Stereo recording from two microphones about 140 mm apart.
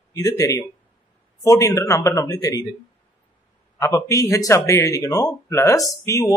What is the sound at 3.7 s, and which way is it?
Speech, 20° left (ahead or behind).